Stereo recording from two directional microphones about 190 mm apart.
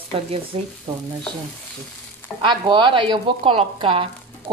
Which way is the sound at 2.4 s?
25° right (ahead or behind).